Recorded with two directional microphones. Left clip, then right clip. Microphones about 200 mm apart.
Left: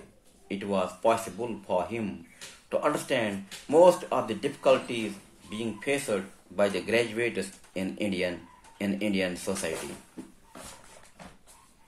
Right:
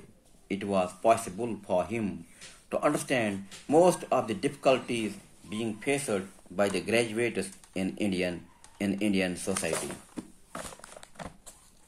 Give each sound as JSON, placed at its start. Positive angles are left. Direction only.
{"t": 0.5, "sound": "speech", "side_deg": -40}